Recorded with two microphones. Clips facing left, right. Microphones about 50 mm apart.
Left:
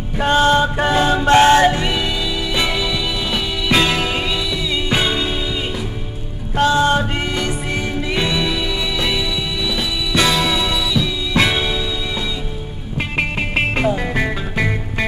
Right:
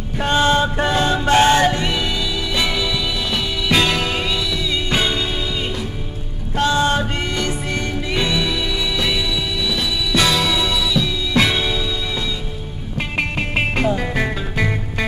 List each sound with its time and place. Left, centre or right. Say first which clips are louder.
0.2 s music: left 2 dB; centre
6.5 s music: left 3 dB; centre
13.6 s music: left 1 dB; centre